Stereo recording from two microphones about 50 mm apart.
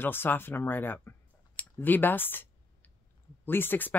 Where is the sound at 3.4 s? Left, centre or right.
Left.